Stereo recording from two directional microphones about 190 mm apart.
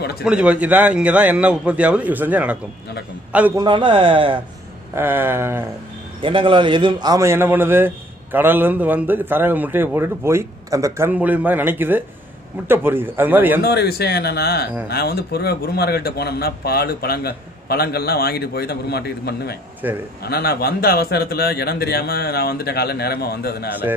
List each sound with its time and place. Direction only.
0.2 s a man's voice: 5° right (ahead or behind)
3.5 s speech: 25° right (ahead or behind)
4.9 s a man's voice: 10° right (ahead or behind)
6.2 s a man's voice: 25° right (ahead or behind); by 13.6 s 10° right (ahead or behind)
13.6 s speech: 55° left (ahead or behind)
19.8 s a man's voice: 10° right (ahead or behind)
20.2 s speech: 55° left (ahead or behind)